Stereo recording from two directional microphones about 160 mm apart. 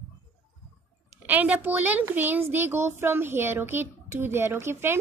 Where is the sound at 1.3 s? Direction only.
10° right (ahead or behind).